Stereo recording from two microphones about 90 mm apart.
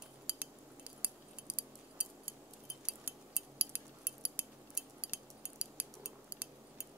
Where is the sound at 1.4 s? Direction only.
15° right (ahead or behind).